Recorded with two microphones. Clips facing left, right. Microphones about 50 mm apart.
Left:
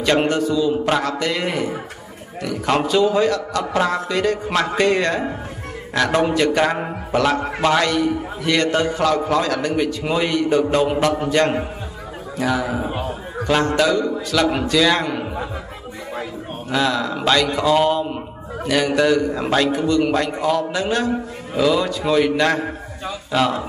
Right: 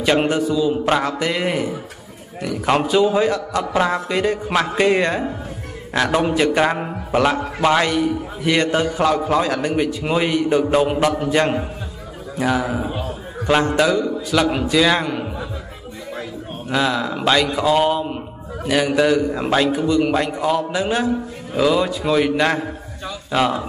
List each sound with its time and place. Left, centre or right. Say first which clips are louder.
0.3 s a man's voice: even; centre
6.1 s a man's voice: even; centre
12.6 s a man's voice: even; centre
13.5 s a man's voice: right 1 dB; centre
16.7 s a man's voice: even; centre